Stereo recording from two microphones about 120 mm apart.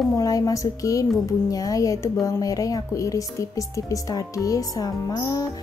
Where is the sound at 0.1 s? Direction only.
30° left (ahead or behind).